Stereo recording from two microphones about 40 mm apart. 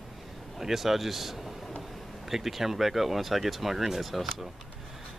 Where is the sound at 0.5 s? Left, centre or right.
Centre.